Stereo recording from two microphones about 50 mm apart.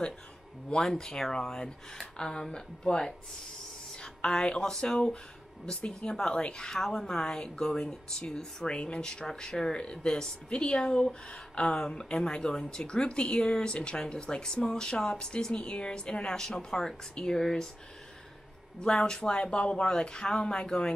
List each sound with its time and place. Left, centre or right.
0.7 s a woman's voice: centre
18.8 s a woman's voice: centre